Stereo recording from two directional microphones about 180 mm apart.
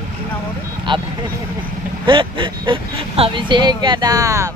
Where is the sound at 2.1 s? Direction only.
25° right (ahead or behind).